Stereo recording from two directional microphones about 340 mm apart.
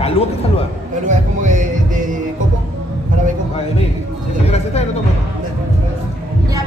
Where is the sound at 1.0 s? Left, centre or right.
Right.